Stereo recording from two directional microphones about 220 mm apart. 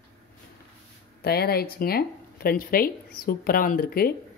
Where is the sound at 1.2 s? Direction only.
45° left (ahead or behind).